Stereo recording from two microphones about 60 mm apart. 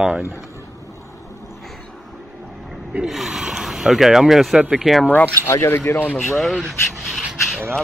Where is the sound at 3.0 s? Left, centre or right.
Centre.